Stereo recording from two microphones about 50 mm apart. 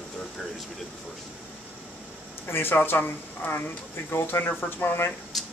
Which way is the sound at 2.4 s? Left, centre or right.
Left.